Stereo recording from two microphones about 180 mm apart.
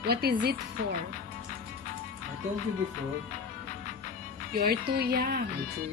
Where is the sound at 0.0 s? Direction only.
60° right (ahead or behind).